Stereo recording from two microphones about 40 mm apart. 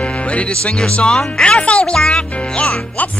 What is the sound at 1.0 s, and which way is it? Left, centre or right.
Music, centre.